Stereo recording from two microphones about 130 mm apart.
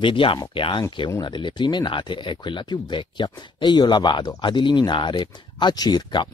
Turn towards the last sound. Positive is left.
turn(degrees=35)  # may be behind; listen again after turning